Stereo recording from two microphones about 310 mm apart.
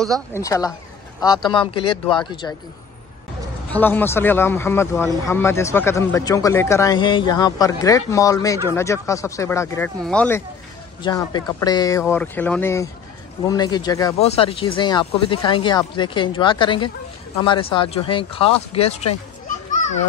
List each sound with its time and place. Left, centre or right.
0.0 s speech: centre
3.7 s speech: centre
19.4 s children playing: left